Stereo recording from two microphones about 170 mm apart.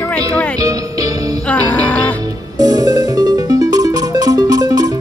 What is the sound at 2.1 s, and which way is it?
Music, 25° right (ahead or behind).